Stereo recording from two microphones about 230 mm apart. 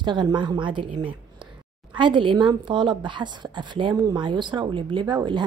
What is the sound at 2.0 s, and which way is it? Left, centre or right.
A woman's voice, right.